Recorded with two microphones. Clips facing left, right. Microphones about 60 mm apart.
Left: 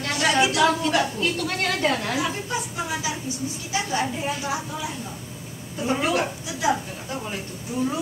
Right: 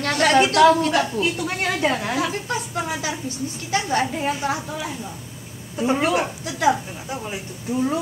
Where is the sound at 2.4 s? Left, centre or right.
Right.